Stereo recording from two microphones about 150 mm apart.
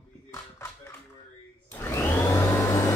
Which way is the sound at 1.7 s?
15° left (ahead or behind).